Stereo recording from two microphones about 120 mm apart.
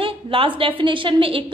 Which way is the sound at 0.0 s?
50° right (ahead or behind).